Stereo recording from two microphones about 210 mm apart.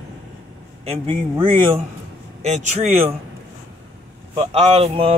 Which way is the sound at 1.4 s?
25° right (ahead or behind).